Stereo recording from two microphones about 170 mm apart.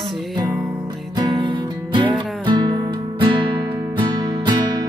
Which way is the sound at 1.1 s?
25° right (ahead or behind).